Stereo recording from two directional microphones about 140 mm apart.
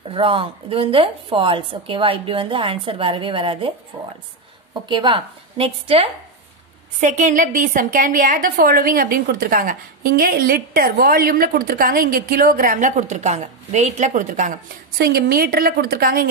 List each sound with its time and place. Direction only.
0.1 s a woman's voice: 40° right (ahead or behind)
4.8 s a woman's voice: 35° right (ahead or behind)
7.0 s a woman's voice: 60° right (ahead or behind); by 16.3 s 90° right